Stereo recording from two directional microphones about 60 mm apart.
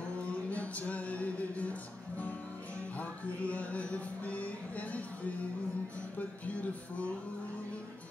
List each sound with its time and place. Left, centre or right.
0.3 s music: left